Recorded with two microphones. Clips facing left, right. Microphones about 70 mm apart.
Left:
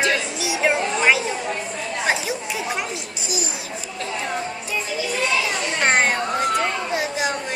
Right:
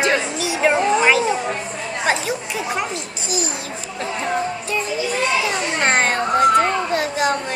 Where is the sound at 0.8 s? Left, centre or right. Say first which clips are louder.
Right 6 dB; right.